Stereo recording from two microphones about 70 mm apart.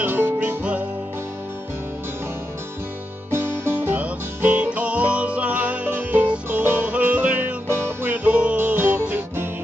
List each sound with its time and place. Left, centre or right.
0.0 s music: right
0.6 s music: centre
3.3 s music: right
4.0 s music: right
8.1 s music: right